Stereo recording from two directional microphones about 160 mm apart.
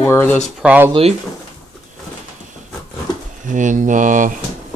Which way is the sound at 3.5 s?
50° right (ahead or behind).